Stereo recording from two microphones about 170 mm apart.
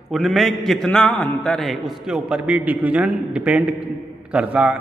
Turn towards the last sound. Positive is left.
turn(degrees=-5)  # may be behind; listen again after turning